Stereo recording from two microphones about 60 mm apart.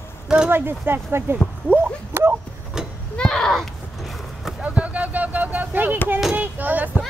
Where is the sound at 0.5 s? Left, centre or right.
Right.